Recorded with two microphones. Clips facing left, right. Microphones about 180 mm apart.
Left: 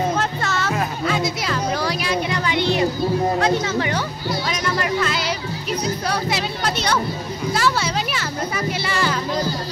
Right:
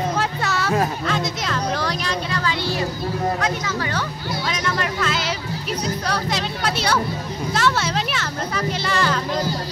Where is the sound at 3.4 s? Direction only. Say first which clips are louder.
Left 5 dB; 25° left (ahead or behind).